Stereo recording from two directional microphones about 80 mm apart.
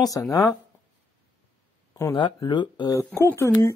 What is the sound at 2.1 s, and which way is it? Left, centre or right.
Speech, left.